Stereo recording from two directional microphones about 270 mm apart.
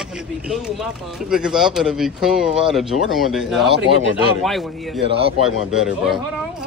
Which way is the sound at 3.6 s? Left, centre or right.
Right.